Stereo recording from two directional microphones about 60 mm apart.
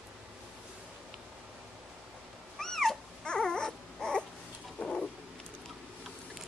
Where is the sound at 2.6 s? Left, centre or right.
Centre.